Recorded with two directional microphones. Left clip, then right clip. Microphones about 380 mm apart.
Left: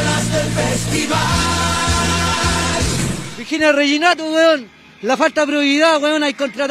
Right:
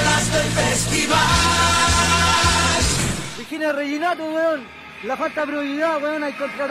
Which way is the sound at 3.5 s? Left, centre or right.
Left.